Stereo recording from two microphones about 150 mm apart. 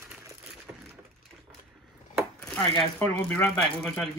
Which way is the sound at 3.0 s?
20° left (ahead or behind).